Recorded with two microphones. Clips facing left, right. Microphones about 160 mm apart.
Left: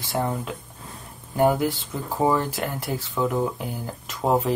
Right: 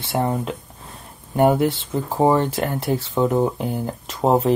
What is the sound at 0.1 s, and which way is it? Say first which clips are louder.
Speech: right 4 dB; 25° right (ahead or behind).